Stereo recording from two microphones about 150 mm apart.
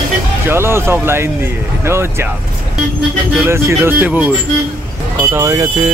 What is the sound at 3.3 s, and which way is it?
Speech, 15° right (ahead or behind).